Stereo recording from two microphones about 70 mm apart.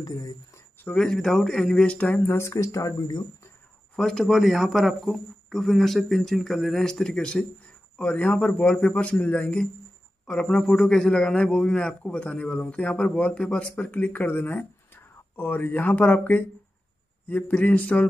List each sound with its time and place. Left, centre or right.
0.0 s speech: left
0.9 s a man's voice: centre
2.3 s speech: left
3.9 s a man's voice: centre; by 18.0 s left